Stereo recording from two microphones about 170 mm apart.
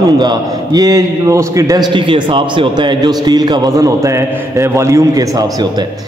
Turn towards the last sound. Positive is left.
turn(degrees=-15)  # may be behind; listen again after turning